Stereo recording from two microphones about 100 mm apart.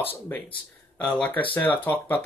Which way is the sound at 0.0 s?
20° left (ahead or behind).